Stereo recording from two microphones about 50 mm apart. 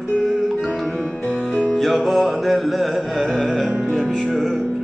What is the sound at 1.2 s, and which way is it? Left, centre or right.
Music, left.